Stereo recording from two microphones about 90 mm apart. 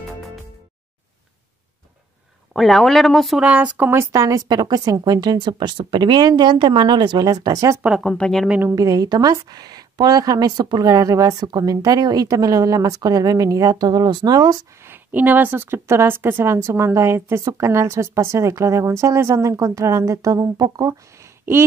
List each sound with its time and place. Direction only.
2.5 s speech: centre (ahead or behind)
3.3 s speech: 15° right (ahead or behind)
4.1 s a woman's voice: 40° right (ahead or behind)
8.0 s speech: 10° left (ahead or behind)
8.5 s speech: 20° right (ahead or behind)
8.7 s a woman's voice: 45° right (ahead or behind)
14.9 s a woman's voice: 20° right (ahead or behind); by 20.9 s 45° right (ahead or behind)